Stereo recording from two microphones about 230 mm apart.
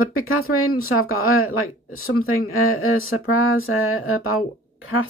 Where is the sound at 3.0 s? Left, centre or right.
Left.